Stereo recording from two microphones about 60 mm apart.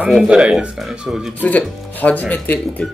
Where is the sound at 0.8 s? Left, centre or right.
Centre.